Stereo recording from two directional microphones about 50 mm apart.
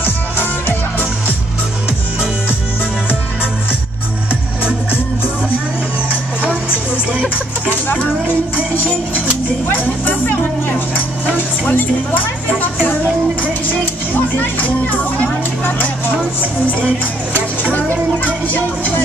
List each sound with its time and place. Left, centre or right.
0.0 s music: left
9.7 s music: left
11.7 s speech: left
12.8 s music: left
17.7 s music: left